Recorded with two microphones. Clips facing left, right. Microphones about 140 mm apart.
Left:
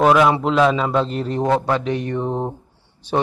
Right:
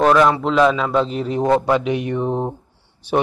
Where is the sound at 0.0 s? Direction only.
10° left (ahead or behind).